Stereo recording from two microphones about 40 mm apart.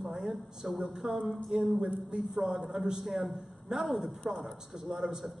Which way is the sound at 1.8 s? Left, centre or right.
Right.